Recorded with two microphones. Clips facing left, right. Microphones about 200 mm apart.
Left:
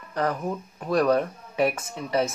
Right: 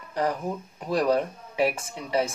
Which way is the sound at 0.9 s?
10° right (ahead or behind).